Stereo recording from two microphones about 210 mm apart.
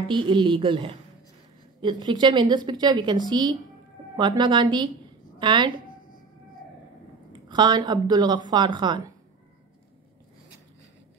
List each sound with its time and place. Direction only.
0.1 s a woman's voice: 20° right (ahead or behind)
7.4 s a woman's voice: 20° right (ahead or behind)